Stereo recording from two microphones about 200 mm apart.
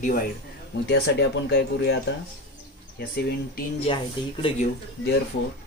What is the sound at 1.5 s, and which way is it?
Speech, 60° left (ahead or behind).